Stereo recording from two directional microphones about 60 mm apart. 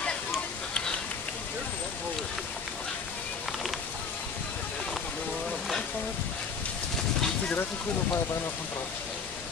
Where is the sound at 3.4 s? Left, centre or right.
Centre.